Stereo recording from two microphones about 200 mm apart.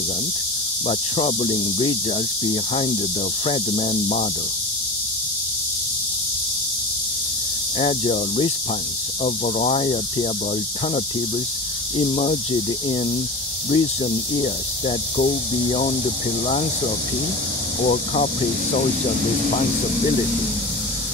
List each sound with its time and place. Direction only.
0.8 s speech: 25° left (ahead or behind)
7.8 s speech: 25° left (ahead or behind)
12.0 s speech: 25° left (ahead or behind)
13.7 s speech: 25° left (ahead or behind)
17.8 s speech: 30° left (ahead or behind)